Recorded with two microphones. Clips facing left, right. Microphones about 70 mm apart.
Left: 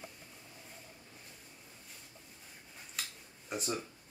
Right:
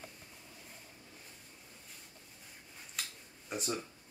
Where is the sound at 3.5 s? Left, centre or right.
Centre.